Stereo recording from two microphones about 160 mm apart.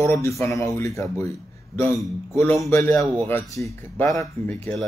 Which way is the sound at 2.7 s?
15° left (ahead or behind).